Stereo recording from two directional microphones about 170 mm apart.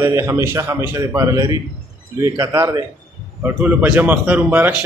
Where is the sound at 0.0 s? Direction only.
15° right (ahead or behind).